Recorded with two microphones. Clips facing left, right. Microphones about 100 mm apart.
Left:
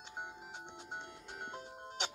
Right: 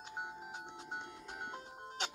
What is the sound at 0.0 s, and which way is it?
Music, 10° right (ahead or behind).